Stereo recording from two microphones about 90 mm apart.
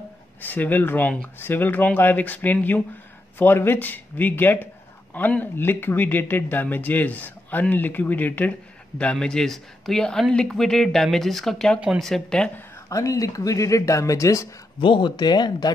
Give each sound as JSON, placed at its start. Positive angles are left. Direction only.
{"t": 0.4, "sound": "a man's voice", "side_deg": 20}
{"t": 12.9, "sound": "speech", "side_deg": 40}
{"t": 14.8, "sound": "speech", "side_deg": 65}